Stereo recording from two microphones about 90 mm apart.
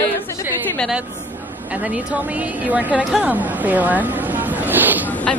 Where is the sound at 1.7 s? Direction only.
15° right (ahead or behind).